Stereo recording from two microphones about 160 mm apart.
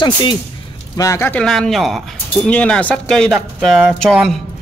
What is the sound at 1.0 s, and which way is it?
A man's voice, 15° left (ahead or behind).